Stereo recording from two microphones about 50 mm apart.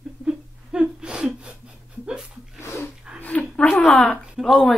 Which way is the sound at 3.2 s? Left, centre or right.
Left.